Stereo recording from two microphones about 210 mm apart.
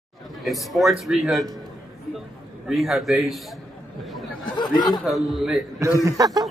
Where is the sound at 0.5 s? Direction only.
Centre (ahead or behind).